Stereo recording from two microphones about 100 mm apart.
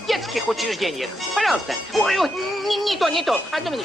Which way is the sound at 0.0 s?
Centre (ahead or behind).